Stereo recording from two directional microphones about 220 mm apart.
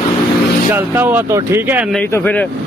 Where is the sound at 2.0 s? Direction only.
10° left (ahead or behind).